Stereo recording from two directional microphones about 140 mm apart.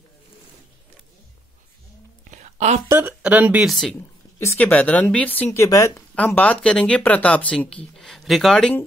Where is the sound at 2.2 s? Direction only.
55° right (ahead or behind).